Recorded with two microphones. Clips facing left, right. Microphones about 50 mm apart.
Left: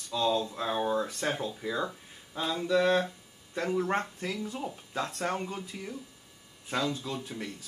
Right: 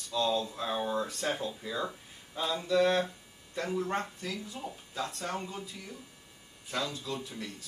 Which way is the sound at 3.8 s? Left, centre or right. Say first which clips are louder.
Left 3 dB; left.